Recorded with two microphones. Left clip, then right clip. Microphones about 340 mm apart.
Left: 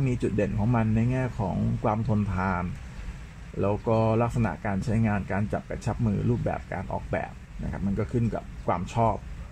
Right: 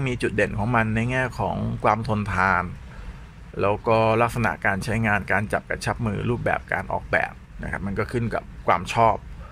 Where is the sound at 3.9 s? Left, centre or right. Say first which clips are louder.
Right 6 dB; right.